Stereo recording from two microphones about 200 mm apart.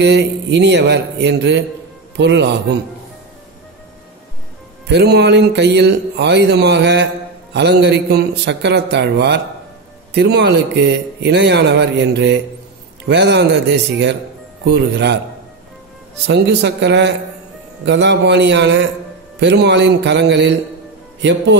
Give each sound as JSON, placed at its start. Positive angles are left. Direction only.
{"t": 0.0, "sound": "a man's voice", "side_deg": -60}
{"t": 4.8, "sound": "a man's voice", "side_deg": -55}
{"t": 16.3, "sound": "a man's voice", "side_deg": -60}